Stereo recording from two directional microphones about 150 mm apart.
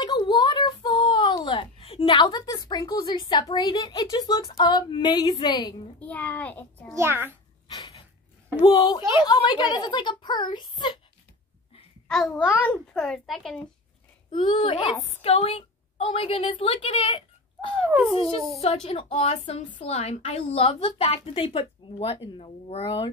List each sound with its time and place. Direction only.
0.0 s a child's voice: 30° left (ahead or behind)
5.9 s a child's voice: 10° left (ahead or behind)
7.0 s a child's voice: 15° right (ahead or behind)
7.6 s a sound: 30° left (ahead or behind)
8.6 s a woman's voice: 30° left (ahead or behind)
12.1 s a child's voice: centre (ahead or behind)
14.3 s a woman's voice: 35° left (ahead or behind)